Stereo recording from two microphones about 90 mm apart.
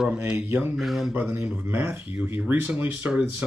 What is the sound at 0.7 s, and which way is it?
Mantra, centre (ahead or behind).